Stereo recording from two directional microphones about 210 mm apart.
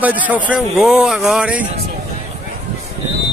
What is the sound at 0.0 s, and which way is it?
Speech, 5° right (ahead or behind).